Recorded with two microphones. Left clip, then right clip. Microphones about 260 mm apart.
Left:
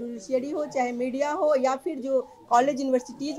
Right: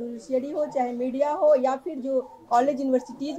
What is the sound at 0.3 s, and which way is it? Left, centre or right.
A woman's voice, left.